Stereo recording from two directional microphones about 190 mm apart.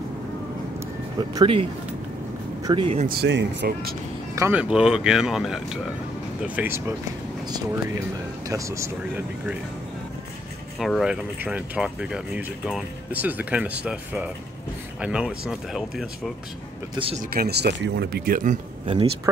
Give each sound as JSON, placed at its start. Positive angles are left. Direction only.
{"t": 1.3, "sound": "speech", "side_deg": -30}
{"t": 3.1, "sound": "speech", "side_deg": -60}
{"t": 4.4, "sound": "speech", "side_deg": -10}
{"t": 7.4, "sound": "speech", "side_deg": -20}
{"t": 10.8, "sound": "speech", "side_deg": 0}
{"t": 16.9, "sound": "speech", "side_deg": -30}
{"t": 17.2, "sound": "speech", "side_deg": -50}
{"t": 18.9, "sound": "speech", "side_deg": -30}